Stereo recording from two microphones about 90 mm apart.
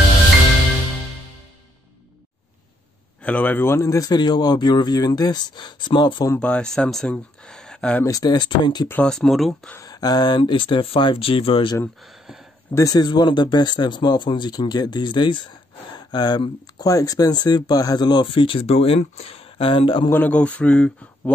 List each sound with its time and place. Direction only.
3.2 s speech: 15° left (ahead or behind); by 4.1 s 35° left (ahead or behind)
4.1 s speech: 55° left (ahead or behind)
6.4 s speech: 10° left (ahead or behind)
8.0 s speech: 45° left (ahead or behind)
9.0 s speech: 5° left (ahead or behind)
9.8 s speech: 45° left (ahead or behind); by 11.7 s 85° left
12.7 s speech: 40° left (ahead or behind); by 20.1 s 75° left (ahead or behind)
20.1 s speech: 15° left (ahead or behind)